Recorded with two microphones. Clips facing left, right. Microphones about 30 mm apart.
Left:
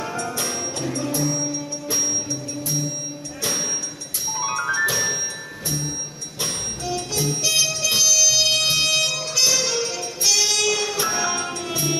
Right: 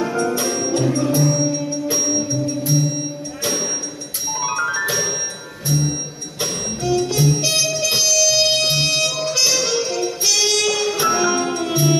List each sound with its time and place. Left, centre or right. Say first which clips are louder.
0.4 s music: right 7 dB; centre
4.4 s music: right 1 dB; centre
7.2 s music: right 3 dB; centre